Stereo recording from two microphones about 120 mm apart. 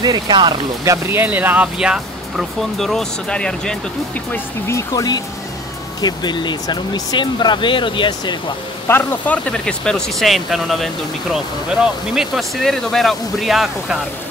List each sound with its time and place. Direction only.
0.0 s speech: 35° right (ahead or behind)
1.1 s speech: 15° right (ahead or behind); by 3.7 s 5° left (ahead or behind)
4.3 s speech: 25° left (ahead or behind); by 8.5 s 40° left (ahead or behind)
8.8 s speech: 15° left (ahead or behind); by 14.0 s 5° right (ahead or behind)